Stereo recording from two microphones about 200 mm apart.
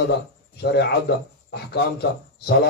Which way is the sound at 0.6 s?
55° left (ahead or behind).